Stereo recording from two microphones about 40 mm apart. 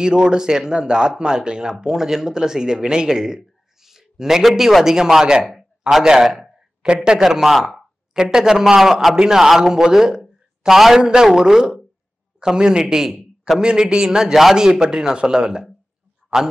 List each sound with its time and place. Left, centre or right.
0.0 s speech: right
5.4 s a sound: centre
5.9 s a sound: centre
7.0 s speech: centre
8.1 s a man's voice: centre
13.6 s a man's voice: centre